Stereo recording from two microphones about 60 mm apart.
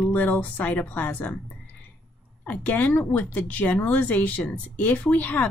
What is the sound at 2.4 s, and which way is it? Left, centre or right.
Speech, left.